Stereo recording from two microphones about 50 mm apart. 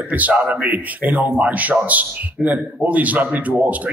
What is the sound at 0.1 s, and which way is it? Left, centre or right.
Speech, right.